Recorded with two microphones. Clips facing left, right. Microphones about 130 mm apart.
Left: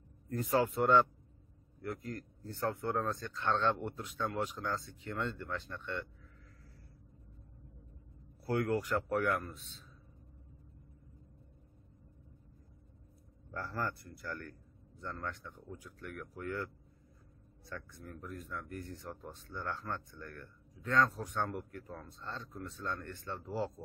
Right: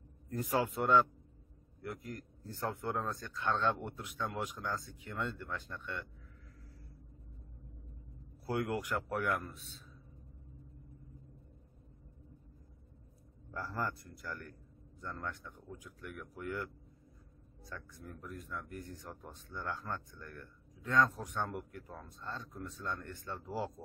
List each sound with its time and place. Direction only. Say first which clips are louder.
0.4 s speech: left 3 dB; 15° right (ahead or behind)
3.1 s speech: left 2 dB; 5° right (ahead or behind)
8.5 s speech: left 3 dB; 15° right (ahead or behind)
13.5 s speech: even; 15° right (ahead or behind)
17.7 s speech: left 2 dB; 5° right (ahead or behind)